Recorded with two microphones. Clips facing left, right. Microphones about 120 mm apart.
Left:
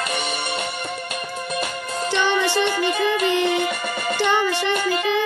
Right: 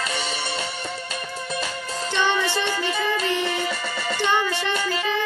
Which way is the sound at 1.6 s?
15° left (ahead or behind).